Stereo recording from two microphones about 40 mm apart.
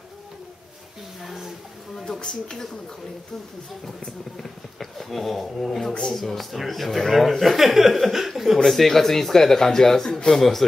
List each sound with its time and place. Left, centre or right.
1.2 s a sound: centre
2.1 s speech: left
4.4 s speech: centre